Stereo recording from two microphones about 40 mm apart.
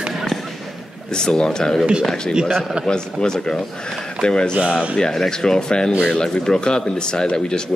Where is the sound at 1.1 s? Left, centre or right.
Centre.